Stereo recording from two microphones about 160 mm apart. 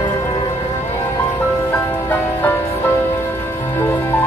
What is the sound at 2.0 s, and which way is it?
Music, 10° left (ahead or behind).